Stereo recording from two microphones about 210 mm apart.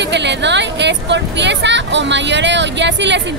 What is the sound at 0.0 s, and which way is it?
Speech, 55° right (ahead or behind).